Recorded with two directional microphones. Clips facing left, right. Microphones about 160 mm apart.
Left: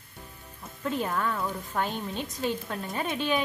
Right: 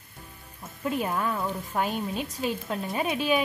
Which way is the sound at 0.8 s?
10° right (ahead or behind).